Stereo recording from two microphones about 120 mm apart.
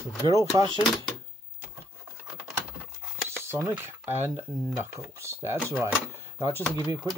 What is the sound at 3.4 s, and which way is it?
Speech, 20° right (ahead or behind).